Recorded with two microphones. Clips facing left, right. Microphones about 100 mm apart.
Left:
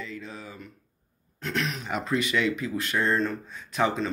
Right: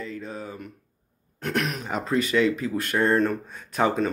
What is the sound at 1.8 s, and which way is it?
Speech, 35° right (ahead or behind).